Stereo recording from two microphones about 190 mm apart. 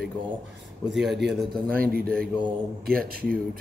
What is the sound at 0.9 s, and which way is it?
Speech, centre (ahead or behind).